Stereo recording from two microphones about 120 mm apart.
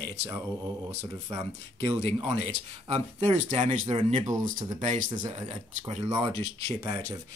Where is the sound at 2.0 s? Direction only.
55° right (ahead or behind); by 4.0 s 75° right (ahead or behind).